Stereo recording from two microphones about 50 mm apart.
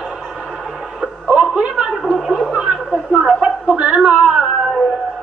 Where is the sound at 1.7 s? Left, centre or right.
Centre.